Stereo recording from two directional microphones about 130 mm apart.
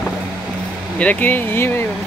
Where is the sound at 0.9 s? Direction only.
10° left (ahead or behind).